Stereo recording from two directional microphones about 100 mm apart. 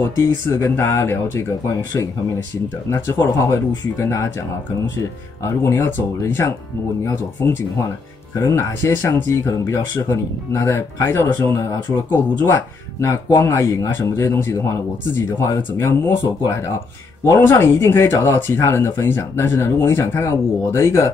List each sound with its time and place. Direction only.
0.2 s speech: 25° left (ahead or behind)
8.4 s speech: 35° left (ahead or behind)
17.2 s speech: 30° left (ahead or behind)